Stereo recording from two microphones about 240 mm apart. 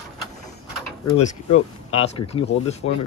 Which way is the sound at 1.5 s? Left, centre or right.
Left.